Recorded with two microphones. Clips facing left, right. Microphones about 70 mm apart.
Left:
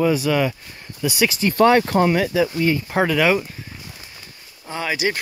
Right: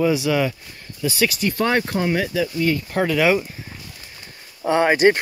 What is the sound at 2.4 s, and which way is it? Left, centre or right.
Speech, left.